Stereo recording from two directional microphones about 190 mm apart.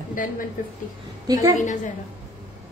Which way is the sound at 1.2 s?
15° right (ahead or behind).